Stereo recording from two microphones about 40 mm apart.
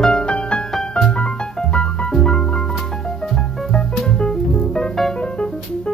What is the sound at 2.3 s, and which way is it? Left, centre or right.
Music, left.